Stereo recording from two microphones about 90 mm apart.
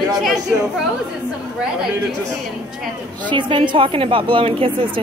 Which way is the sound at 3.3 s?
65° right (ahead or behind).